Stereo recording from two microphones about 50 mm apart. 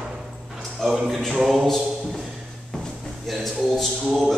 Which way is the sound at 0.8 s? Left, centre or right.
Centre.